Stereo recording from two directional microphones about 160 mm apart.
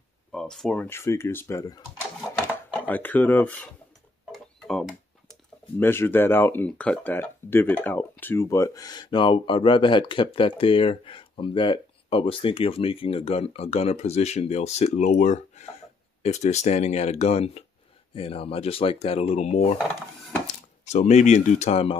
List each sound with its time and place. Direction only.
0.3 s a sound: 5° left (ahead or behind)
0.8 s speech: 15° left (ahead or behind)
4.3 s music: centre (ahead or behind)
5.8 s speech: 15° left (ahead or behind); by 19.8 s 40° left (ahead or behind)
20.8 s speech: 45° left (ahead or behind)